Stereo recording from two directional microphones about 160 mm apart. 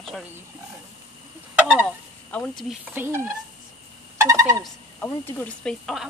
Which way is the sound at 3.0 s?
15° right (ahead or behind).